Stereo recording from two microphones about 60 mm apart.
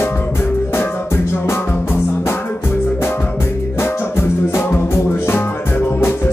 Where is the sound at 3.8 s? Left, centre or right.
Left.